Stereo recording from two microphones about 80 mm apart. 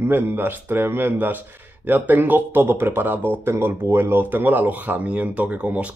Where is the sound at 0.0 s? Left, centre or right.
Right.